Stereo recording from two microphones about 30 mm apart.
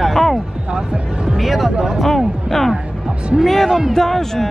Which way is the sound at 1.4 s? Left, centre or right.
Centre.